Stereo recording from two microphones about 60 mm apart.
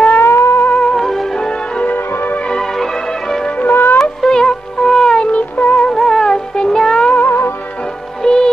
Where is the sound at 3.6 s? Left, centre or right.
Left.